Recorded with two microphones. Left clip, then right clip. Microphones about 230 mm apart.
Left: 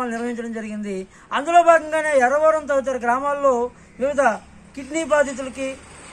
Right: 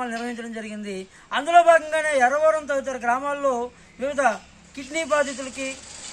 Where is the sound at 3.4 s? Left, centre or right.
Centre.